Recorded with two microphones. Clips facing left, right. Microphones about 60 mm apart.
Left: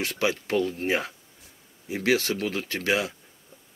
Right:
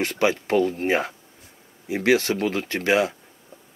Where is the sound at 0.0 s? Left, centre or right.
Right.